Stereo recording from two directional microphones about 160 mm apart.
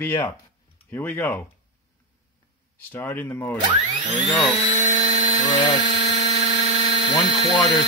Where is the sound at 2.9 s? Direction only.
10° left (ahead or behind).